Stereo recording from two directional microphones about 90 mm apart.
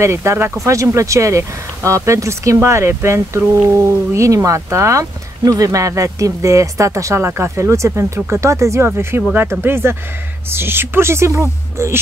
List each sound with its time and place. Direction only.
0.0 s speech: 30° right (ahead or behind)